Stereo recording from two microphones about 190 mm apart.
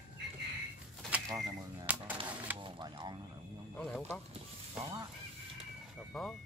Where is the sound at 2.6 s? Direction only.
25° right (ahead or behind).